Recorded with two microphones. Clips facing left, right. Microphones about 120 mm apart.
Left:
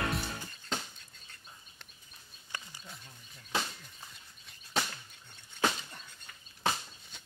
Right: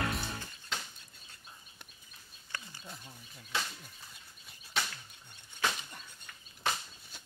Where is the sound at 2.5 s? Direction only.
15° left (ahead or behind).